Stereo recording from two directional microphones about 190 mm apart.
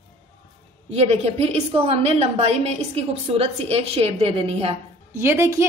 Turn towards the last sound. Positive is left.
turn(degrees=-15)  # may be behind; listen again after turning